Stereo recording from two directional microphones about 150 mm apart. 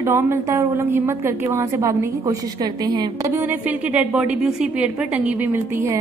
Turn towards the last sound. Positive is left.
turn(degrees=-15)  # may be behind; listen again after turning